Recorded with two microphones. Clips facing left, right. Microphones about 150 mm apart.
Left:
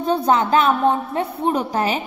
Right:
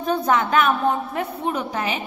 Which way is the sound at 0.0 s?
30° left (ahead or behind).